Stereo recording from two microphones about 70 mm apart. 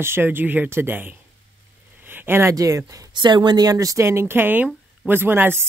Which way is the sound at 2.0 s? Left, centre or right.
Right.